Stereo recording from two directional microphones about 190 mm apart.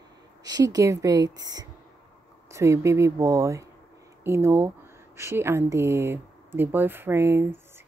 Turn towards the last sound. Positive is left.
turn(degrees=-15)  # may be behind; listen again after turning